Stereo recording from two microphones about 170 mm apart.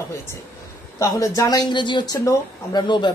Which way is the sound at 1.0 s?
20° left (ahead or behind).